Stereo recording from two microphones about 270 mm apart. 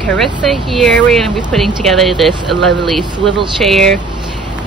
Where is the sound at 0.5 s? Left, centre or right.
Centre.